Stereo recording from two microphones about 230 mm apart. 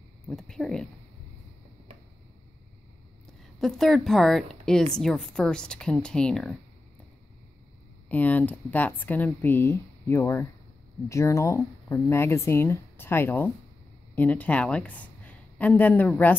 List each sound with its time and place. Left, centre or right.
0.3 s a woman's voice: centre
3.5 s a woman's voice: centre
8.1 s a woman's voice: centre